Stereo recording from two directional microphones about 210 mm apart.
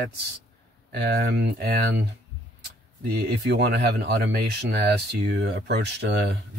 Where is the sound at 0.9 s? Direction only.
50° right (ahead or behind).